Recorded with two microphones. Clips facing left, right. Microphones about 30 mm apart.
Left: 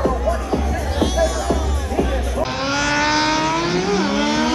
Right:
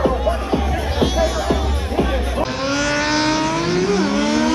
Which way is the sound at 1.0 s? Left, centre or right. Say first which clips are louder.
Even; centre.